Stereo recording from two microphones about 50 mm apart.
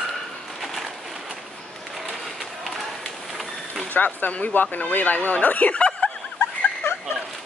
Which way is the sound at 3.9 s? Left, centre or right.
Left.